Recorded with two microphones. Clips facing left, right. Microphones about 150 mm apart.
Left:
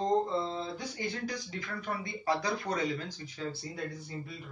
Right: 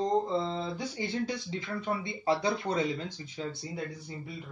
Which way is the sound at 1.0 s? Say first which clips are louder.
Right 4 dB; 25° right (ahead or behind).